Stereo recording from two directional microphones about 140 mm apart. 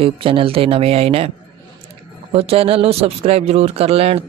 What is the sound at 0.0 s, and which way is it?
Speech, 40° right (ahead or behind).